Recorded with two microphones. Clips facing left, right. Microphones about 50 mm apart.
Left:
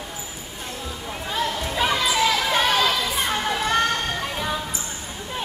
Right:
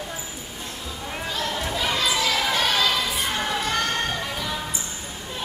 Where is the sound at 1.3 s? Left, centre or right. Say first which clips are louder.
Left 3 dB; left.